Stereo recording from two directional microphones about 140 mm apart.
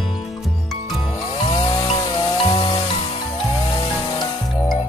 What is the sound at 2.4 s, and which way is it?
Music, 35° left (ahead or behind).